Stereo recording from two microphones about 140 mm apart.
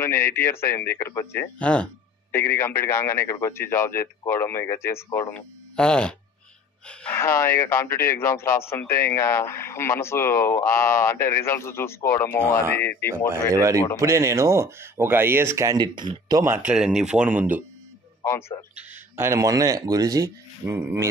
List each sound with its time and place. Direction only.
0.0 s speech: 15° left (ahead or behind)
13.5 s speech: 20° right (ahead or behind)
16.4 s speech: 10° right (ahead or behind)
18.8 s speech: 20° right (ahead or behind)